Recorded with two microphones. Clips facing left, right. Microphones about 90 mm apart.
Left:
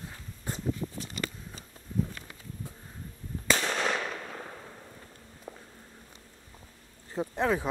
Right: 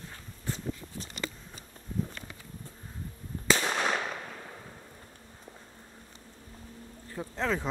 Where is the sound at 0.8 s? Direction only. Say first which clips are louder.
Left 11 dB; 70° left (ahead or behind).